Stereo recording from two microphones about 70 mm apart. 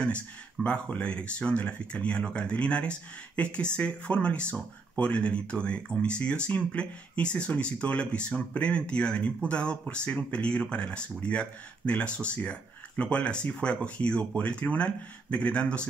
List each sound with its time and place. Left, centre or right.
0.7 s speech: centre